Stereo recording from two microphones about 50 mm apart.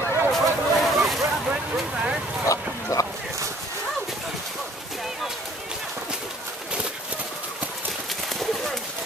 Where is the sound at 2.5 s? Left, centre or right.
Left.